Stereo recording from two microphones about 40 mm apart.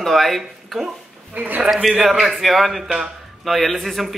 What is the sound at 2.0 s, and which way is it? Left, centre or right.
Speech, centre.